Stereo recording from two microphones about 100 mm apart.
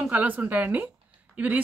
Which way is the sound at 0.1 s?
15° right (ahead or behind).